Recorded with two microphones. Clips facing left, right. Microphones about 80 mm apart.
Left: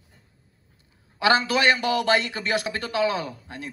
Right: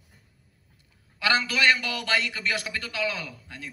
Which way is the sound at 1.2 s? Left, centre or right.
Left.